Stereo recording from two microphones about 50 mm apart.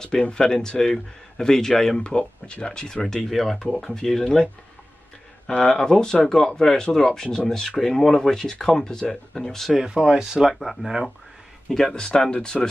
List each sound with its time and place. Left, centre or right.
0.0 s speech: centre
2.0 s speech: centre
5.6 s speech: centre
9.8 s speech: centre
10.5 s speech: centre
11.7 s speech: centre